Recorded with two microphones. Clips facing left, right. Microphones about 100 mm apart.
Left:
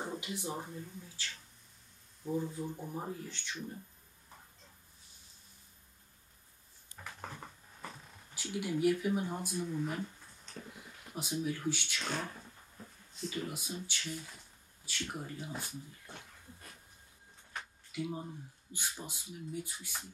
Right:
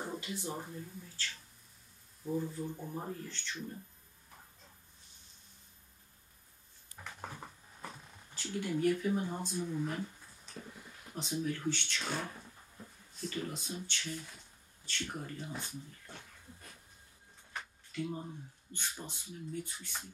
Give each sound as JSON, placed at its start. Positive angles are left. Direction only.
{"t": 0.2, "sound": "speech", "side_deg": 15}
{"t": 2.3, "sound": "speech", "side_deg": 15}
{"t": 7.2, "sound": "dog", "side_deg": -5}
{"t": 8.4, "sound": "speech", "side_deg": 10}
{"t": 9.7, "sound": "a sound", "side_deg": 0}
{"t": 11.7, "sound": "speech", "side_deg": 10}
{"t": 12.0, "sound": "a sound", "side_deg": -5}
{"t": 13.8, "sound": "speech", "side_deg": 5}
{"t": 17.9, "sound": "speech", "side_deg": 5}